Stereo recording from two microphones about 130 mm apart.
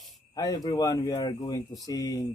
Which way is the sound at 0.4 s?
30° left (ahead or behind).